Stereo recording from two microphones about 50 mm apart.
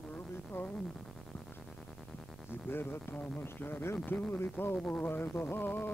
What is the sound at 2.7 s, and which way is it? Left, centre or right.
Speech, left.